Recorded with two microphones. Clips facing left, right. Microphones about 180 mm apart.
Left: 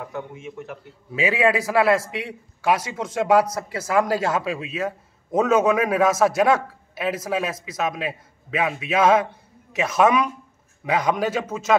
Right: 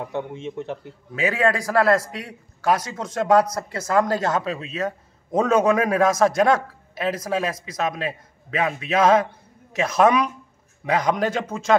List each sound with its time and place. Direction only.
0.1 s speech: 30° right (ahead or behind)
0.8 s a man's voice: 10° left (ahead or behind)